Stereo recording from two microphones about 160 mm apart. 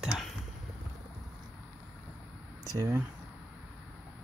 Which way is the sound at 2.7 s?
20° right (ahead or behind).